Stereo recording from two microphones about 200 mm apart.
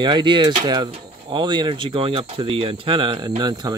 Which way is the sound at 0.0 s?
20° right (ahead or behind).